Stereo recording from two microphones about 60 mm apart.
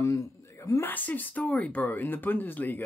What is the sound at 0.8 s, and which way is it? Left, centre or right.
Speech, left.